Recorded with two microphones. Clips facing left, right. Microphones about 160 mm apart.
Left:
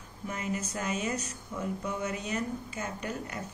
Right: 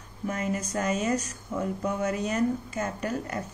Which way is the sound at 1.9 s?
50° right (ahead or behind).